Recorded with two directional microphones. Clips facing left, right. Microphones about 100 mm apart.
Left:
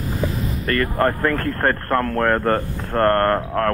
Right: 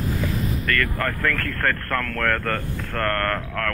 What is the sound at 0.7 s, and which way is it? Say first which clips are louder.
Speech: left 8 dB; 30° left (ahead or behind).